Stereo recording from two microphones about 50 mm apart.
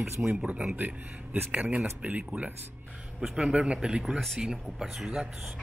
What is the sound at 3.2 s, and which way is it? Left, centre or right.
Speech, centre.